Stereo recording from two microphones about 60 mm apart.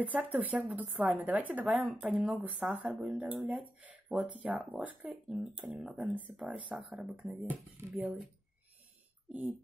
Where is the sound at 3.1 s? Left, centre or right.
Right.